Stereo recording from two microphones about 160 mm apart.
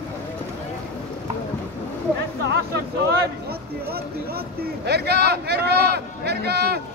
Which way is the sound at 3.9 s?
75° right (ahead or behind).